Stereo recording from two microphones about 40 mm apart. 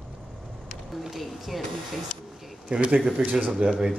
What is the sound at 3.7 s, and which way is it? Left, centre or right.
Speech, centre.